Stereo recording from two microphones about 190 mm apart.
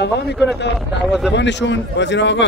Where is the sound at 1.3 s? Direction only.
70° left (ahead or behind).